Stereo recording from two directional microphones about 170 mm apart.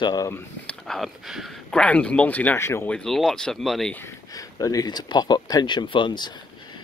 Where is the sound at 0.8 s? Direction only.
Centre (ahead or behind).